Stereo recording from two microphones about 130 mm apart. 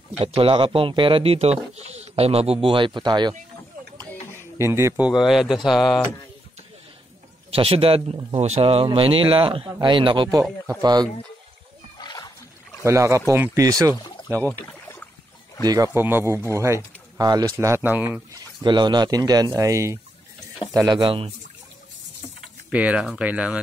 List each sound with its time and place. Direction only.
0.2 s speech: 45° right (ahead or behind)
4.6 s speech: 20° right (ahead or behind)
5.0 s speech: centre (ahead or behind)
7.5 s speech: 45° right (ahead or behind)
12.0 s wild animals: 30° left (ahead or behind)
12.8 s speech: 20° right (ahead or behind)
14.0 s pour: 35° left (ahead or behind)
14.7 s rowboat: 15° left (ahead or behind)
15.6 s speech: 30° right (ahead or behind)
15.9 s speech: 20° right (ahead or behind)
18.3 s speech: 35° right (ahead or behind)
22.7 s speech: 10° right (ahead or behind)